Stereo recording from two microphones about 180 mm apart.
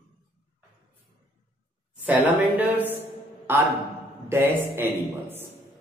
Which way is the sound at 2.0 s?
10° right (ahead or behind).